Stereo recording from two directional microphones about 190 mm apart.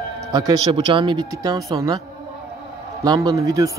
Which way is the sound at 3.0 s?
20° right (ahead or behind).